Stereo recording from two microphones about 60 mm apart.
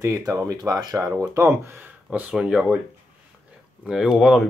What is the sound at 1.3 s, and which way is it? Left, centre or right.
Speech, right.